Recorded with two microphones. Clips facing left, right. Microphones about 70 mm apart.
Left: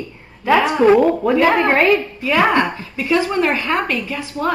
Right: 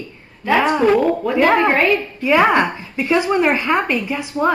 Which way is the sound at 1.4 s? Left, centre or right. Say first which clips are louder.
Right 2 dB; centre.